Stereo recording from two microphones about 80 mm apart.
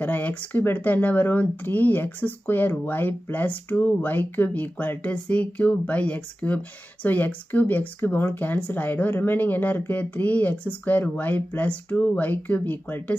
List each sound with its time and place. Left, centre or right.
0.0 s speech: left